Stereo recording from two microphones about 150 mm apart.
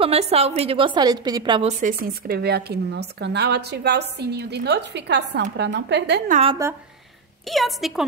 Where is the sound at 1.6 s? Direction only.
55° right (ahead or behind); by 6.3 s 90° right.